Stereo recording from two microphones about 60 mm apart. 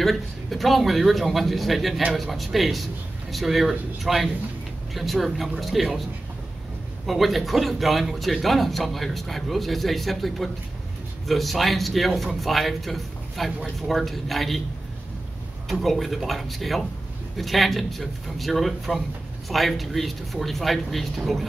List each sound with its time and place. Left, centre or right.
0.0 s a man's voice: centre
7.1 s a man's voice: centre
15.7 s a man's voice: centre